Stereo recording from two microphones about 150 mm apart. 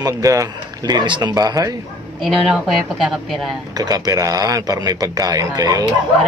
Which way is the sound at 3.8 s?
25° right (ahead or behind).